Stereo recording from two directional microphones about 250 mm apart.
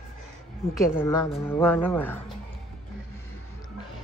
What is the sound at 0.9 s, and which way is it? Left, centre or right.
Speech, centre.